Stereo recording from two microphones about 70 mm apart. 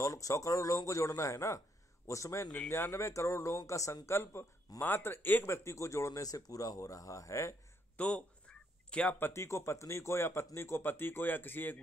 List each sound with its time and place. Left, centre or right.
0.0 s speech: left
5.5 s speech: left
8.0 s quack: centre
9.2 s speech: left